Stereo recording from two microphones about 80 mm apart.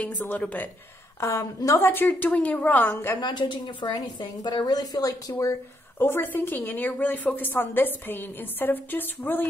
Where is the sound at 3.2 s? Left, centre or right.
Left.